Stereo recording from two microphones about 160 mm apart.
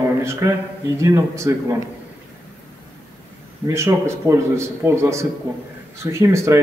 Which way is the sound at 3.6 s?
15° right (ahead or behind).